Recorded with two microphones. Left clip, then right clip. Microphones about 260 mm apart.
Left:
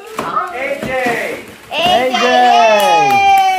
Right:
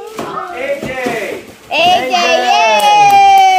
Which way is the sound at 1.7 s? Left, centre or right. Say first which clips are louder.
Right 2 dB; right.